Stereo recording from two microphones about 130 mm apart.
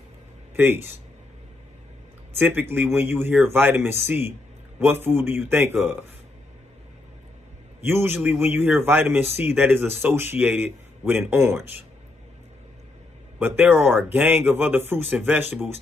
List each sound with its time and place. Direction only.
0.6 s a man's voice: 15° right (ahead or behind)
2.3 s a man's voice: 15° right (ahead or behind)
5.0 s a man's voice: 15° right (ahead or behind)
7.8 s a man's voice: 15° right (ahead or behind)
13.4 s a man's voice: 15° right (ahead or behind)